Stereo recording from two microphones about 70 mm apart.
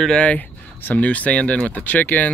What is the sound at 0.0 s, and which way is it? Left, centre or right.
Speech, centre.